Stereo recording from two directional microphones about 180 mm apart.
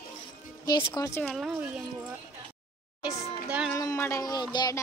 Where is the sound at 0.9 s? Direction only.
15° left (ahead or behind).